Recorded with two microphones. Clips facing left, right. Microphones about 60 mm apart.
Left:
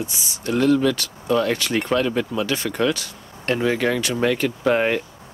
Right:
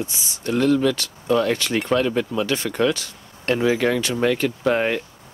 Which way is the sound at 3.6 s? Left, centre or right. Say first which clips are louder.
Right 1 dB; left.